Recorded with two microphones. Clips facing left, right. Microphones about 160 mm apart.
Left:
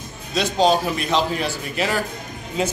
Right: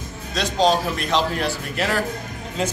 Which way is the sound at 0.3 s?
5° left (ahead or behind).